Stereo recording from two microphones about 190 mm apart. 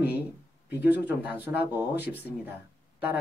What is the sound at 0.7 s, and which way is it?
Speech, 10° right (ahead or behind).